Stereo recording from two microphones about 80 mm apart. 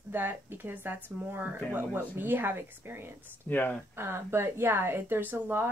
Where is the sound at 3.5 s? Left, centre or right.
Left.